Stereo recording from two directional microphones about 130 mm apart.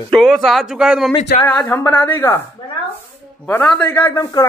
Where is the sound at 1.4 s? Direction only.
10° left (ahead or behind).